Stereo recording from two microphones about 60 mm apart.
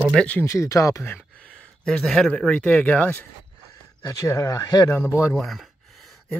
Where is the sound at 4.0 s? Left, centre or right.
Left.